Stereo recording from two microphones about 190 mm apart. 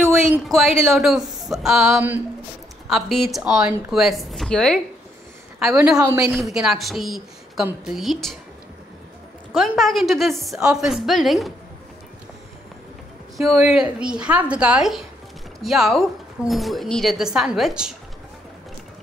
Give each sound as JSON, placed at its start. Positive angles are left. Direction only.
{"t": 0.0, "sound": "a sound", "side_deg": -15}
{"t": 0.4, "sound": "a woman's voice", "side_deg": 0}
{"t": 5.9, "sound": "a woman's voice", "side_deg": -20}
{"t": 6.3, "sound": "a woman's voice", "side_deg": 0}
{"t": 9.5, "sound": "a woman's voice", "side_deg": 0}
{"t": 13.4, "sound": "a woman's voice", "side_deg": 0}